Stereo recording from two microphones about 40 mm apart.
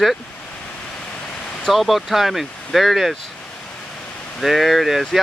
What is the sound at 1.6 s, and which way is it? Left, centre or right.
Speech, centre.